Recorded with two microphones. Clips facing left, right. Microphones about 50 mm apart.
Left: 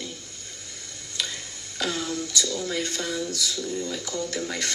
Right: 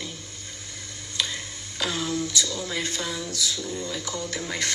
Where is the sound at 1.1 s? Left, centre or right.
Right.